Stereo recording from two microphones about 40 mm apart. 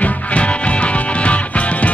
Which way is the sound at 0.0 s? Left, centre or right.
Left.